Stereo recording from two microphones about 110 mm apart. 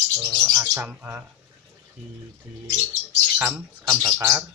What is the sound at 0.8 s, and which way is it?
Speech, 15° right (ahead or behind).